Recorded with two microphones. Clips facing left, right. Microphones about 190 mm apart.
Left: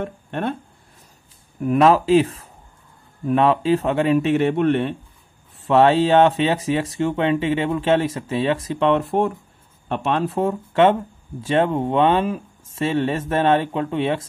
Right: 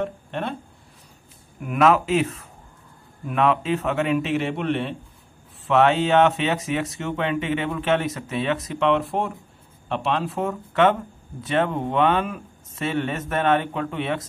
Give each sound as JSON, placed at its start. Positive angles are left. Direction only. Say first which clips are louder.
{"t": 0.0, "sound": "speech", "louder": "left 2 dB", "side_deg": 50}
{"t": 1.6, "sound": "a man's voice", "louder": "left 3 dB", "side_deg": 35}
{"t": 5.7, "sound": "speech", "louder": "left 3 dB", "side_deg": 35}
{"t": 9.8, "sound": "a man's voice", "louder": "left 3 dB", "side_deg": 45}